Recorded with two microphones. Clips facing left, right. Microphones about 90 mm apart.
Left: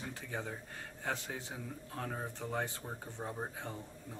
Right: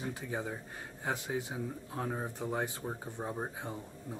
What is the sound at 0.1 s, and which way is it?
Speech, 15° right (ahead or behind).